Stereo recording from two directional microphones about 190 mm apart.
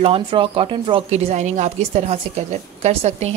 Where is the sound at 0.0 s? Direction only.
30° right (ahead or behind).